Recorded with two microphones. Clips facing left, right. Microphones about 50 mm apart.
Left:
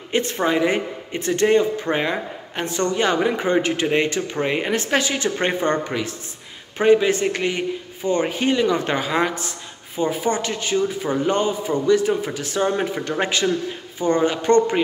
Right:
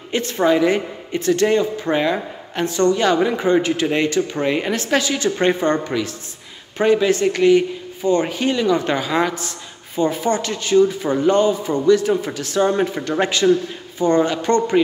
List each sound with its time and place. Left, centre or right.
0.1 s a woman's voice: left
13.4 s a man's voice: centre
13.9 s a man's voice: left